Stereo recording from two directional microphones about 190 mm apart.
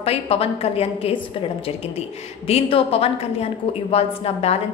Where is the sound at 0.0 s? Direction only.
30° left (ahead or behind).